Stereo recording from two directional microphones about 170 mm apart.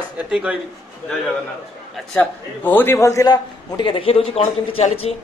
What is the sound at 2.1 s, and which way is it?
A man's voice, 10° left (ahead or behind).